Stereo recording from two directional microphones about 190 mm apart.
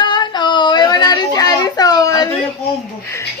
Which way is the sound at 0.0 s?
25° left (ahead or behind).